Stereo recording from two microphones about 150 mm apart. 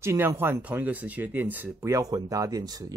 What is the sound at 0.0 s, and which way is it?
Speech, 20° right (ahead or behind).